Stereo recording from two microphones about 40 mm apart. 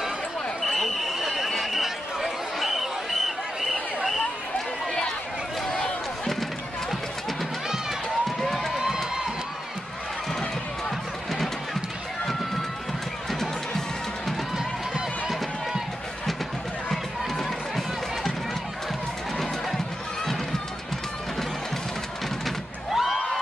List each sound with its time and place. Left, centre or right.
0.6 s basketball bounce: centre
1.5 s a sound: centre
8.3 s a sound: centre
8.7 s crowd: centre
11.3 s run: centre
13.3 s music: centre
14.6 s run: centre
16.9 s run: centre
19.3 s run: centre
22.9 s a sound: centre